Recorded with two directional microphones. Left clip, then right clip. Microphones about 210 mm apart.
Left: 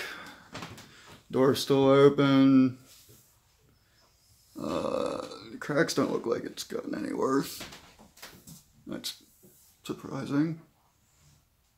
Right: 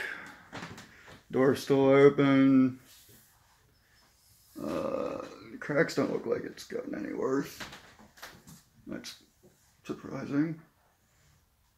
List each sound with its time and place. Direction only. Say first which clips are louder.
0.0 s door: right 1 dB; 15° left (ahead or behind)
1.5 s speech: left 1 dB; 15° left (ahead or behind)
4.6 s a sound: left 2 dB; 15° left (ahead or behind)
5.9 s speech: left 2 dB; 15° left (ahead or behind)
8.8 s speech: left 4 dB; 20° left (ahead or behind)